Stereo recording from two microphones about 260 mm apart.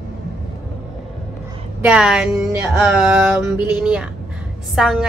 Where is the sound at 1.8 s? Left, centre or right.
Centre.